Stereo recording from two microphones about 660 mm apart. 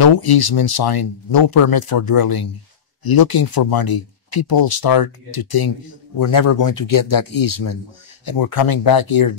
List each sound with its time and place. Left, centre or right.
0.0 s speech: left